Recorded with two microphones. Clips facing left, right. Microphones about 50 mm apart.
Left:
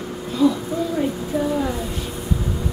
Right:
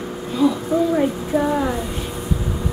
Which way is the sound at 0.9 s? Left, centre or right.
Right.